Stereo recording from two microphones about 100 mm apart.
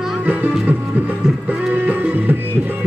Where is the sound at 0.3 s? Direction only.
15° right (ahead or behind).